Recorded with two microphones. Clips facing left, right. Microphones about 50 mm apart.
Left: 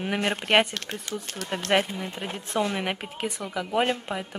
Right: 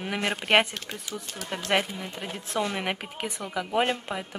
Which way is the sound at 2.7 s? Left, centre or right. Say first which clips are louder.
Left 1 dB; centre.